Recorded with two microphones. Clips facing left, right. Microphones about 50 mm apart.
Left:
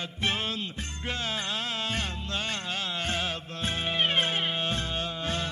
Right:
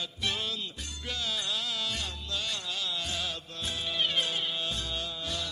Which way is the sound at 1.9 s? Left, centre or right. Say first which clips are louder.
Left 4 dB; left.